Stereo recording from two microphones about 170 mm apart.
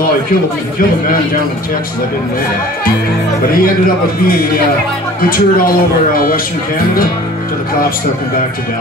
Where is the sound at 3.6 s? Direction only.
60° left (ahead or behind).